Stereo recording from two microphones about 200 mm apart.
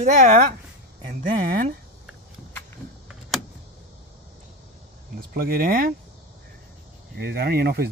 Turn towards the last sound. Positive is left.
turn(degrees=-50)  # may be behind; listen again after turning